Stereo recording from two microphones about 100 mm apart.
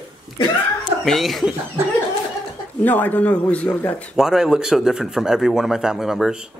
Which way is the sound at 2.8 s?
15° left (ahead or behind).